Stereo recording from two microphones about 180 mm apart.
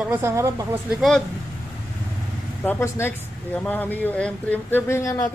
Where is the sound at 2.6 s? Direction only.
10° left (ahead or behind).